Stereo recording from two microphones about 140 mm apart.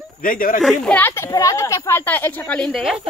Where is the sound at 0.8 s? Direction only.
10° left (ahead or behind).